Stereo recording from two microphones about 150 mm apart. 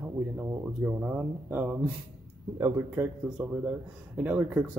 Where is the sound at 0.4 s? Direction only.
10° right (ahead or behind).